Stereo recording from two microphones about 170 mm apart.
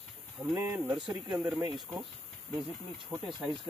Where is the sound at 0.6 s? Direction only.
10° right (ahead or behind).